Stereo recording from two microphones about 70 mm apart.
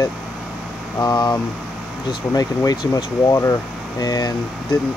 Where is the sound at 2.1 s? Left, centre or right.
Left.